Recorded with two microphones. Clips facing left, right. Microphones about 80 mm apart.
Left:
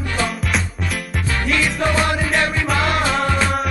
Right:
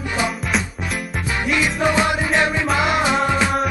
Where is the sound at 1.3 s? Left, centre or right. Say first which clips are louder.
Even; centre.